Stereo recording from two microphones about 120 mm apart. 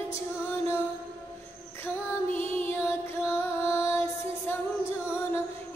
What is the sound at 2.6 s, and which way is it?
Music, 20° left (ahead or behind).